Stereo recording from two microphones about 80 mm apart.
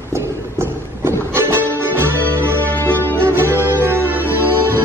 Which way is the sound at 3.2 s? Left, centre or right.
Right.